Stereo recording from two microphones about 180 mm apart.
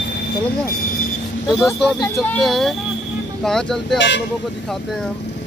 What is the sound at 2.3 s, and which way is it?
Speech, centre (ahead or behind).